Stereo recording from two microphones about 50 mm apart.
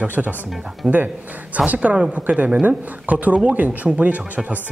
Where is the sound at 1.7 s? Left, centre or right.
Right.